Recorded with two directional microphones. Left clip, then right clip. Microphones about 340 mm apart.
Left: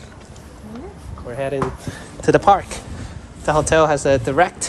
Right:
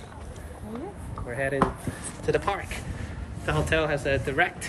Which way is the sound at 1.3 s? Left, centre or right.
Centre.